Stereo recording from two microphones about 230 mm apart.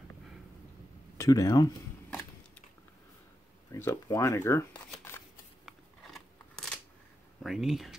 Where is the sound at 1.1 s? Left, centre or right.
Centre.